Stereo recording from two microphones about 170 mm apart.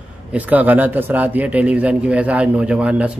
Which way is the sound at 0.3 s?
10° right (ahead or behind).